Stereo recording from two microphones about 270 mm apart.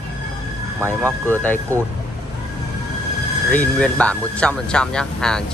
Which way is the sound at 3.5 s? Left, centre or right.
Centre.